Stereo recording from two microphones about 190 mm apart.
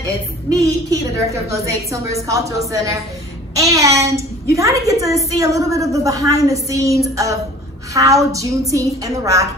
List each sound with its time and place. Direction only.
0.0 s a woman's voice: 15° right (ahead or behind)